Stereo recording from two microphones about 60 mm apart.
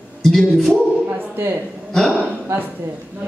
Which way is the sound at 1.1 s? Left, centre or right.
Right.